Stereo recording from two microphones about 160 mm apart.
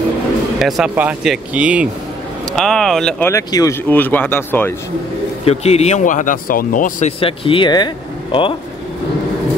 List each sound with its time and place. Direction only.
0.6 s speech: centre (ahead or behind)
2.5 s speech: 5° left (ahead or behind)
3.3 s speech: 20° left (ahead or behind)
5.4 s speech: 40° left (ahead or behind); by 7.1 s 60° left (ahead or behind)
7.1 s speech: 35° left (ahead or behind)